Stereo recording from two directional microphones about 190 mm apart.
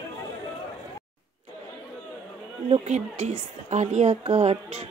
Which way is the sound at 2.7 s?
35° right (ahead or behind).